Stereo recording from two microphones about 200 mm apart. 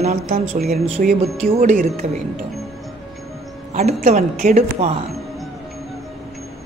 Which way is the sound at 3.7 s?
35° right (ahead or behind).